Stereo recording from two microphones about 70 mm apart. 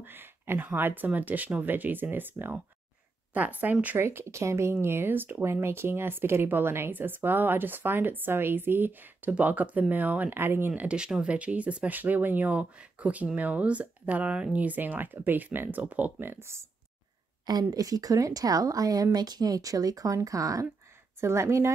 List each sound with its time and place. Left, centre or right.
0.0 s speech: right
4.0 s speech: right
10.7 s speech: centre; by 16.6 s right
17.5 s a woman's voice: right
19.1 s a woman's voice: right
21.2 s speech: right